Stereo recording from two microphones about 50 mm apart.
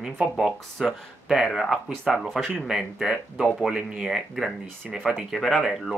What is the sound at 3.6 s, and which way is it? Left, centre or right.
Speech, centre.